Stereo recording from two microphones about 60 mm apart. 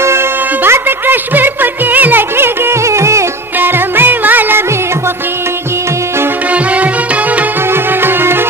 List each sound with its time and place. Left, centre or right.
0.0 s music: right
3.5 s music: right
6.5 s music: right
7.7 s music: right